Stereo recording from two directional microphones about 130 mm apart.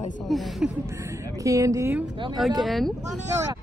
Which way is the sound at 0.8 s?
20° right (ahead or behind).